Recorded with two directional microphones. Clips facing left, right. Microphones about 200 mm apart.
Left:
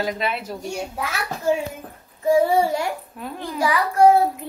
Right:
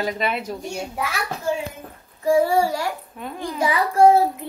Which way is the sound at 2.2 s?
20° left (ahead or behind).